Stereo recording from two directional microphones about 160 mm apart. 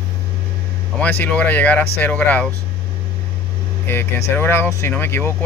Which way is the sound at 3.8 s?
15° left (ahead or behind).